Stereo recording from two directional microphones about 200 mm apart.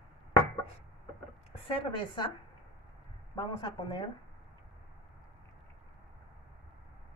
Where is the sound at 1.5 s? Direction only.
25° left (ahead or behind).